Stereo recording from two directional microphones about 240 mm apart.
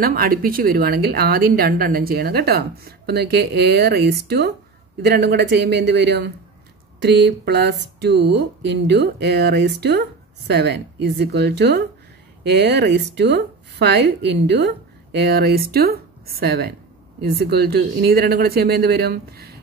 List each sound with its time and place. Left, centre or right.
0.0 s speech: right